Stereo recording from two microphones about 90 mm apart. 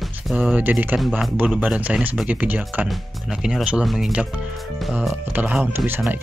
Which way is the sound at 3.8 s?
Centre (ahead or behind).